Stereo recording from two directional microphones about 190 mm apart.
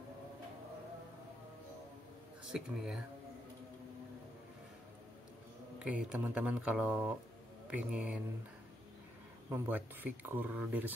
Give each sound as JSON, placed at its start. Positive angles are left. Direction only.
{"t": 2.5, "sound": "speech", "side_deg": -5}
{"t": 5.8, "sound": "speech", "side_deg": -5}
{"t": 9.5, "sound": "speech", "side_deg": -10}